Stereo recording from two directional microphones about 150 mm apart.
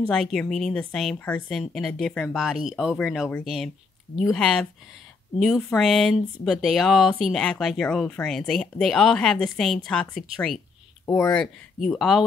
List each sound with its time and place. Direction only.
0.0 s speech: 5° left (ahead or behind)
11.1 s speech: 20° left (ahead or behind)
11.3 s speech: centre (ahead or behind)